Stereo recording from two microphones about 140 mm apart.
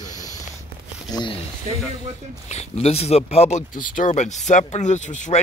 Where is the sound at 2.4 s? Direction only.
50° left (ahead or behind).